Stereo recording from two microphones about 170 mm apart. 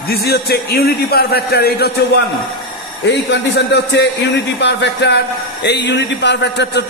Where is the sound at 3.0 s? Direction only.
85° left.